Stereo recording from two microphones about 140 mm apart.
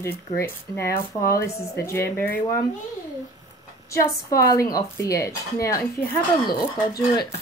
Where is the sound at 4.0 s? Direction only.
90° left.